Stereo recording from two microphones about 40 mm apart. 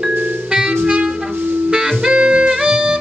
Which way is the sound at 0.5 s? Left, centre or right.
Centre.